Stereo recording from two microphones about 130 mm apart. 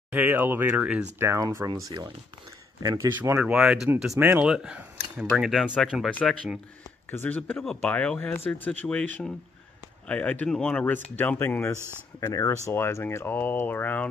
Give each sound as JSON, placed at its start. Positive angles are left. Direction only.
{"t": 0.1, "sound": "speech", "side_deg": -15}
{"t": 1.3, "sound": "speech", "side_deg": -20}
{"t": 2.8, "sound": "speech", "side_deg": -25}
{"t": 3.2, "sound": "speech", "side_deg": -10}